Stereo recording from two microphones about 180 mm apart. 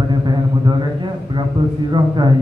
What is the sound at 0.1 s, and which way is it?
Speech, 25° right (ahead or behind).